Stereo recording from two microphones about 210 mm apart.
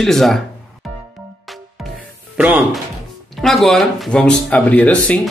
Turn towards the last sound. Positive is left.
turn(degrees=5)  # may be behind; listen again after turning